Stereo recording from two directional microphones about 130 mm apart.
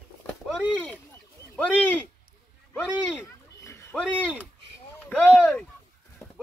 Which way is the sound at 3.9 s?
10° left (ahead or behind).